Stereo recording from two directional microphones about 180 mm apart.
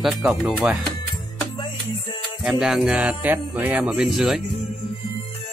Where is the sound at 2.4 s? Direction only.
5° right (ahead or behind).